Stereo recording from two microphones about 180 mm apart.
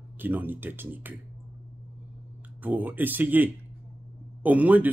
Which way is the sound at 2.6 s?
10° right (ahead or behind).